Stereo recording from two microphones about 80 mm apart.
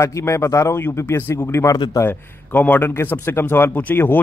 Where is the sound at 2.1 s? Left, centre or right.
Left.